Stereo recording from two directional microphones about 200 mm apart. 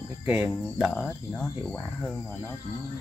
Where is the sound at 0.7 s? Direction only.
Centre (ahead or behind).